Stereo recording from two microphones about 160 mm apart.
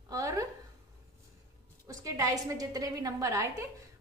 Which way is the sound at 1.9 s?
20° right (ahead or behind).